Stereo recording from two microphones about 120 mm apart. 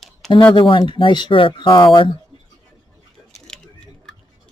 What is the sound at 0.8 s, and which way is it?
Speech, 40° left (ahead or behind).